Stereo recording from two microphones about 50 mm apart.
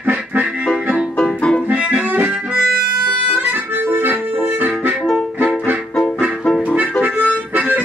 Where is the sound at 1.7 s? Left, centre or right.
Right.